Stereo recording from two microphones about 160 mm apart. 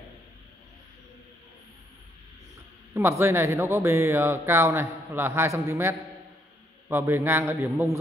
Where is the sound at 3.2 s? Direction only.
15° right (ahead or behind).